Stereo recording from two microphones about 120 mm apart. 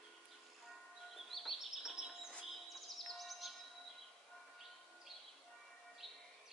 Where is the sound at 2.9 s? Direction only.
Centre (ahead or behind).